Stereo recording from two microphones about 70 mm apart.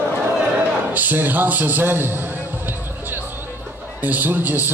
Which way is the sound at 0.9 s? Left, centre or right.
Right.